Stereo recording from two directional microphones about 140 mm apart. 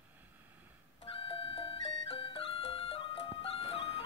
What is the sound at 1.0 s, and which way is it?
Music, 40° left (ahead or behind).